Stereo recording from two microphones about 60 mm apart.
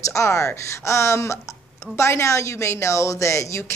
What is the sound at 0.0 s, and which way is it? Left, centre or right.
Speech, left.